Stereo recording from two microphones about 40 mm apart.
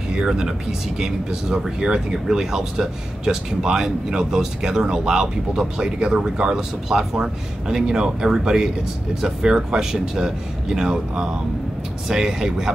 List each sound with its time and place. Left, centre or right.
0.1 s speech: right